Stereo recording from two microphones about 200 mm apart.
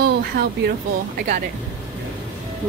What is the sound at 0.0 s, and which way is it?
Speech, 55° right (ahead or behind).